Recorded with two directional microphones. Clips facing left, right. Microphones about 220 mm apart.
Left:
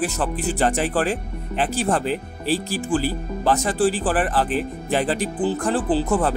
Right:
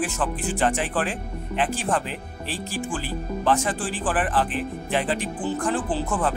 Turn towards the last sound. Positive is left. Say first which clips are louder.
# left 5 dB
turn(degrees=40)  # may be behind; listen again after turning